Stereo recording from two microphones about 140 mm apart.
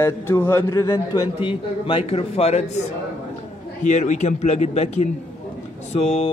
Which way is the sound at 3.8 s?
60° left (ahead or behind).